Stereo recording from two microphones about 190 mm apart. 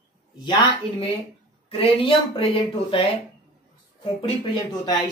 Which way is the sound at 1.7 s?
30° left (ahead or behind).